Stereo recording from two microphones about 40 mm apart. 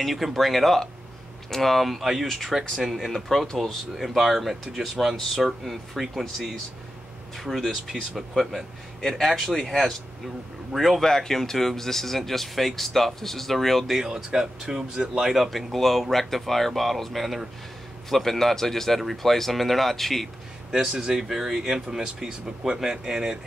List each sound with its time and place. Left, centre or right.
0.0 s speech: centre
7.9 s speech: right
8.4 s speech: centre
11.0 s speech: centre
13.9 s speech: centre
15.3 s speech: centre
21.0 s speech: centre